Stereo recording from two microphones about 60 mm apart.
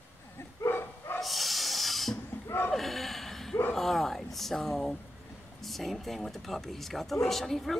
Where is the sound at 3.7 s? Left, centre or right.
Centre.